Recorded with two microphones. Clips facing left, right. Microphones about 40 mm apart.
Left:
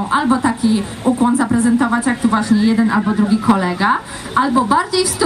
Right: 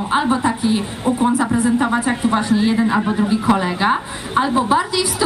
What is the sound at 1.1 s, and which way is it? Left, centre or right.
A woman's voice, right.